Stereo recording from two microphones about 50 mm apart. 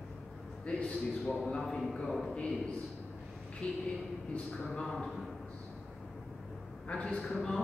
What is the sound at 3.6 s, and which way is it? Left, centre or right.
Speech, left.